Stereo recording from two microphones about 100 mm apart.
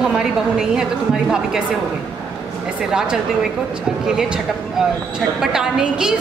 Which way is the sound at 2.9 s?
5° right (ahead or behind).